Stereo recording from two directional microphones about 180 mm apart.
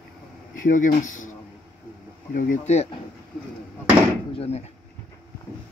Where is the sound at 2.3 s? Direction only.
45° left (ahead or behind).